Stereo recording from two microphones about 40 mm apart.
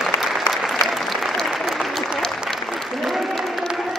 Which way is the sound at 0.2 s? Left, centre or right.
Centre.